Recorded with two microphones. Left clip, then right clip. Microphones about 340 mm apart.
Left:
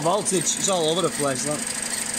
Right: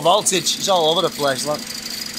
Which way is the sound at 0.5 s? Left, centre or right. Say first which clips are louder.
Right 6 dB; right.